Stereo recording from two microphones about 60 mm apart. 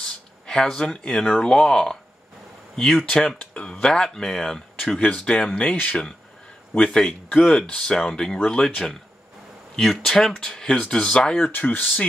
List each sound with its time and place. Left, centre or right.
0.0 s speech: centre
4.7 s speech: left
7.1 s speech: left
7.5 s speech: centre
11.3 s speech: left